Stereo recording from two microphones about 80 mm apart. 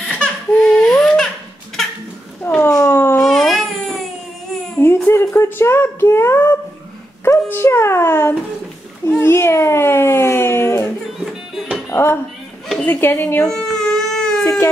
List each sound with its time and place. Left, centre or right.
0.1 s a sound: centre
2.4 s cat: left
2.9 s a sound: left
3.2 s a sound: centre
4.8 s a sound: left
7.2 s dog: left
9.2 s baby cry: left
11.5 s music: centre
11.9 s music: left
12.8 s speech: left
13.5 s baby cry: centre
14.4 s baby cry: left